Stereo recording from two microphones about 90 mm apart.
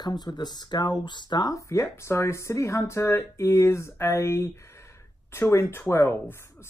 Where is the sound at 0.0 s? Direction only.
50° left (ahead or behind).